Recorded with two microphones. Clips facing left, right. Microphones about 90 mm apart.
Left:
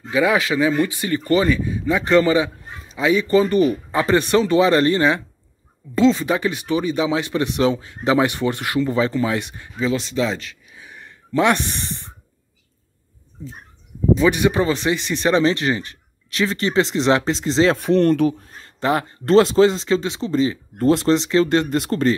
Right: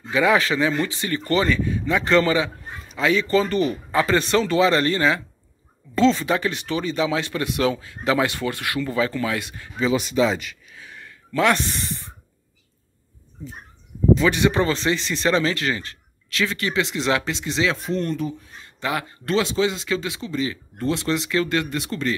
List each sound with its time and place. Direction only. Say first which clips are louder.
0.1 s speech: left 1 dB; 10° left (ahead or behind)
9.9 s speech: right 2 dB; 5° right (ahead or behind)
10.7 s a sound: left 1 dB; 20° left (ahead or behind)
14.2 s speech: left 2 dB; 10° left (ahead or behind); by 17.7 s 35° left (ahead or behind)
17.7 s speech: left 9 dB; 70° left (ahead or behind)
18.4 s speech: left 5 dB; 35° left (ahead or behind)